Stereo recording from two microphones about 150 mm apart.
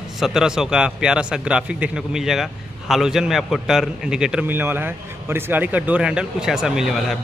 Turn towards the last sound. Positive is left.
turn(degrees=0)  # may be behind; listen again after turning